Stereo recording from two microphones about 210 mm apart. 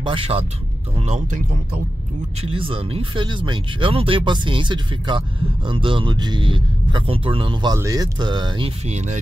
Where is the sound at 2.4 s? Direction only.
25° right (ahead or behind).